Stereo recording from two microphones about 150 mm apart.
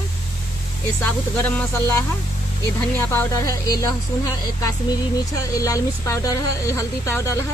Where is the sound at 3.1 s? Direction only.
20° left (ahead or behind).